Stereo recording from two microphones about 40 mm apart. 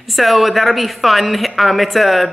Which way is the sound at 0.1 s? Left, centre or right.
Centre.